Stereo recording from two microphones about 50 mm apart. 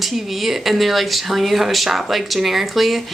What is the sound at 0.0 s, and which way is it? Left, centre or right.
Speech, centre.